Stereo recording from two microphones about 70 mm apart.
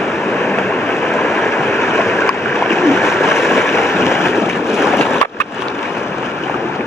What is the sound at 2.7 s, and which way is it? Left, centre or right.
Splash, left.